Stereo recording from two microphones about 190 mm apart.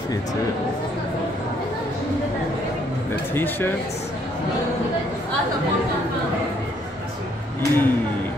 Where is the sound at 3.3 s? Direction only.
10° left (ahead or behind).